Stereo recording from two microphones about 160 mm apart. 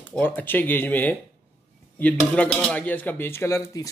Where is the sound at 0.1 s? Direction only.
10° left (ahead or behind).